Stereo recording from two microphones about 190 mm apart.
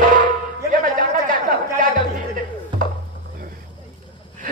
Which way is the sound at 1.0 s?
45° right (ahead or behind).